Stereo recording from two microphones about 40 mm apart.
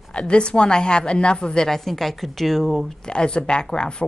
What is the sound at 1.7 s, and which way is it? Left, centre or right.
A woman's voice, centre.